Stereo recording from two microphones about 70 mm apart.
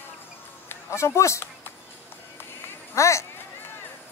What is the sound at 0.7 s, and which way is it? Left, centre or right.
Speech, left.